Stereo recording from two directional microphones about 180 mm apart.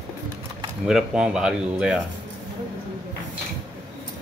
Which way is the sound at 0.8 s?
5° right (ahead or behind).